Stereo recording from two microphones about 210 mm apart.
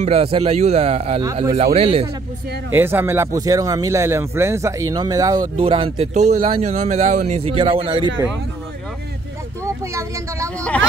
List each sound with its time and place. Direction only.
0.0 s speech: 25° right (ahead or behind)
2.7 s speech: 10° right (ahead or behind)
9.9 s speech: 15° right (ahead or behind)